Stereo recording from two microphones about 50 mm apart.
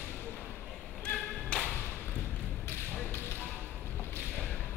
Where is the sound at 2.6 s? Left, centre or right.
Left.